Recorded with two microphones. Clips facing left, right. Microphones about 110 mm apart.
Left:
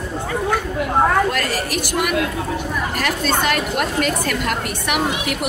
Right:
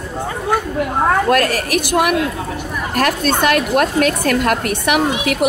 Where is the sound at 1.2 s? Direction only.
60° right (ahead or behind).